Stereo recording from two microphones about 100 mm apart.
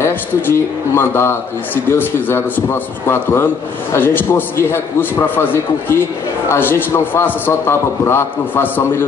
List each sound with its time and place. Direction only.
0.0 s a man's voice: 20° left (ahead or behind)